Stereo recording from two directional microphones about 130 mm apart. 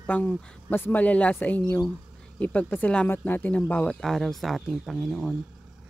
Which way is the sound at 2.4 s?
10° left (ahead or behind).